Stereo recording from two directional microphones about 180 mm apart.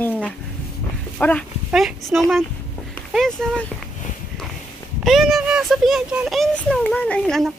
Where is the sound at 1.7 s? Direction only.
5° right (ahead or behind).